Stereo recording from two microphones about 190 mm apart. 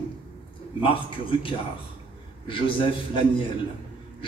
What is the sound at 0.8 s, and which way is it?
A man's voice, 30° left (ahead or behind).